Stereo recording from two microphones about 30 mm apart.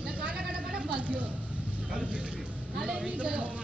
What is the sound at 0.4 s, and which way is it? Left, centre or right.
Vehicle, centre.